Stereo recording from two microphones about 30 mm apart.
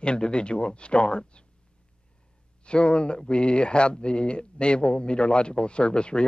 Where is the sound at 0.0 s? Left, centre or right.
Left.